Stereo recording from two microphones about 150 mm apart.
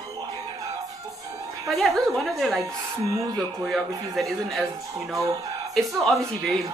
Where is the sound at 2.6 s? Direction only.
25° right (ahead or behind).